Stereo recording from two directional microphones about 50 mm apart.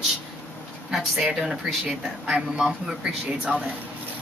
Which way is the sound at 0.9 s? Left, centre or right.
Centre.